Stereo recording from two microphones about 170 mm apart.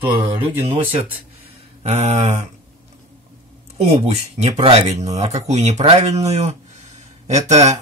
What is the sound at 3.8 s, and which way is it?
Speech, 40° right (ahead or behind).